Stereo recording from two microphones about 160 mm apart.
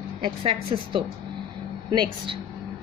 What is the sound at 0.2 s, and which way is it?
A woman's voice, 35° right (ahead or behind).